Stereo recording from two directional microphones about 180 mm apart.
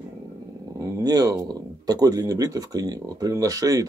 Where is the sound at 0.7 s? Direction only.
20° right (ahead or behind).